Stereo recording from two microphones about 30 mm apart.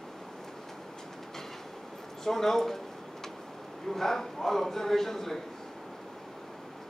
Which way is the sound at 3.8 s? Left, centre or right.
Centre.